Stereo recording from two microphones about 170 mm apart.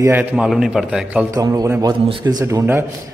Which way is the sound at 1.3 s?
20° right (ahead or behind).